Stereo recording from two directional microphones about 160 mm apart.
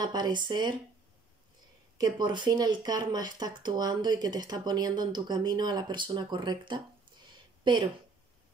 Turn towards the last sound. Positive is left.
turn(degrees=-30)  # may be behind; listen again after turning